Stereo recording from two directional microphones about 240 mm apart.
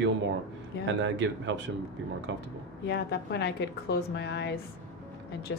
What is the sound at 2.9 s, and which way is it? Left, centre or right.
A woman's voice, left.